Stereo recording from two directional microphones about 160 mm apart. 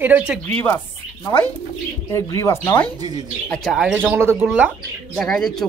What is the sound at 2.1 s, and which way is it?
Speech, 20° left (ahead or behind).